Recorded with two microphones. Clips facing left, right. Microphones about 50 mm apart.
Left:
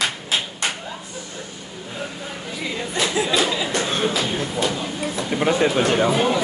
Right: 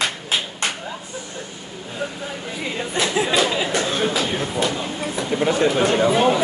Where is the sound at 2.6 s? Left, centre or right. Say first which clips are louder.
Right 1 dB; right.